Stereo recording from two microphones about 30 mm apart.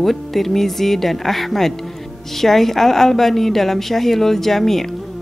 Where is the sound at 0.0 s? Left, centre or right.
Centre.